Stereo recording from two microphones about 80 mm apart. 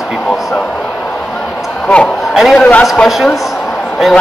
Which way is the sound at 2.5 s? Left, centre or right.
Centre.